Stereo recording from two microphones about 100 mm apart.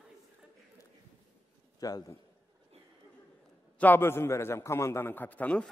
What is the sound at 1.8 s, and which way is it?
Speech, 40° left (ahead or behind).